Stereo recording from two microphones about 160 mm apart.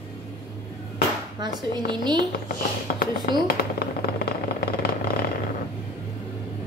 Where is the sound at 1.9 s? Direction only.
30° right (ahead or behind).